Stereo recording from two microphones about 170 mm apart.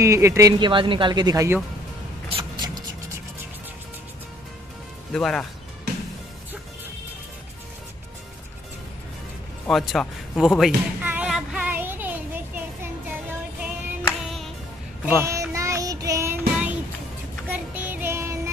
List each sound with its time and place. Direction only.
0.0 s a woman's voice: 15° right (ahead or behind)
2.2 s a sound: 30° right (ahead or behind)
5.1 s a man's voice: 5° left (ahead or behind)
9.7 s a man's voice: centre (ahead or behind)
10.6 s music: 10° right (ahead or behind)
14.0 s music: centre (ahead or behind)
15.2 s music: 20° right (ahead or behind)
17.5 s child singing: 10° right (ahead or behind)